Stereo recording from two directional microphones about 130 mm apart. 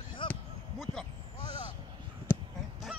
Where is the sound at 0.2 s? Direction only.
40° left (ahead or behind).